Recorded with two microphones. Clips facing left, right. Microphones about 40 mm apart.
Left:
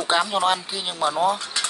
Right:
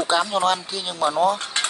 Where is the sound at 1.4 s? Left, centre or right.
Right.